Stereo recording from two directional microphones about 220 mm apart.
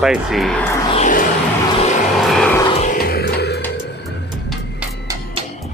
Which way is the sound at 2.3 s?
5° left (ahead or behind).